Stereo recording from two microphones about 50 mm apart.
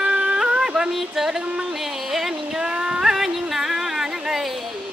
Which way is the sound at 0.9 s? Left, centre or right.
Centre.